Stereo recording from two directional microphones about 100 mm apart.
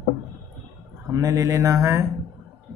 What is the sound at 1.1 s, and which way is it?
Mantra, 35° right (ahead or behind).